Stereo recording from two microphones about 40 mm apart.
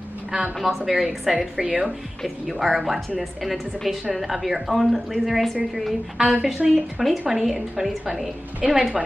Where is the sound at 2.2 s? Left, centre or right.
Centre.